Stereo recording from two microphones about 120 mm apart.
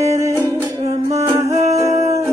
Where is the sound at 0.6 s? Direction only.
30° right (ahead or behind).